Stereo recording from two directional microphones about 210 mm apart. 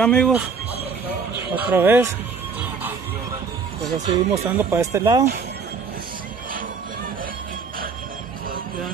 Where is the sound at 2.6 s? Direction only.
10° right (ahead or behind).